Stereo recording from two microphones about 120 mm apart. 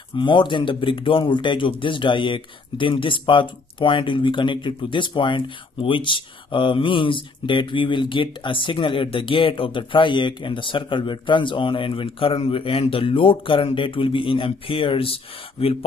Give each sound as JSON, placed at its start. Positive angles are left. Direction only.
{"t": 0.1, "sound": "speech", "side_deg": 40}